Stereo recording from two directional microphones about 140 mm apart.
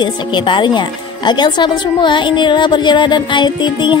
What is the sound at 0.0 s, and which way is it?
Speech, 35° left (ahead or behind).